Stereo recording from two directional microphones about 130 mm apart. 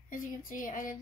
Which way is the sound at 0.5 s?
90° left.